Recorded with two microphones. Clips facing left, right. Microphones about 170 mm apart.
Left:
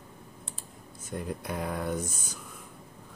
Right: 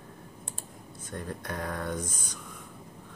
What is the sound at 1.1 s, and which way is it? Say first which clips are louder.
Speech: left 2 dB; 10° left (ahead or behind).